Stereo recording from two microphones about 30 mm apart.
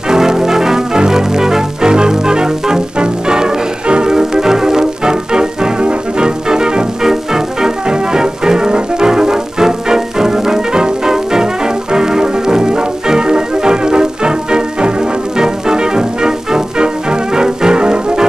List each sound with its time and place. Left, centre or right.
0.1 s music: centre